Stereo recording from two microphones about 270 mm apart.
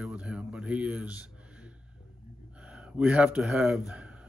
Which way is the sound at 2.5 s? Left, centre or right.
Centre.